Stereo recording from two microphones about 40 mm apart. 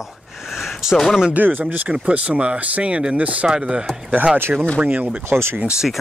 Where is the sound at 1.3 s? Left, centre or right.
Right.